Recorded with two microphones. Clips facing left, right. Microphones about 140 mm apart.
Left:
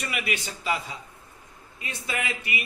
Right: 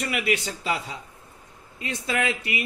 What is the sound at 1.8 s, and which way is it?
Speech, 75° right (ahead or behind).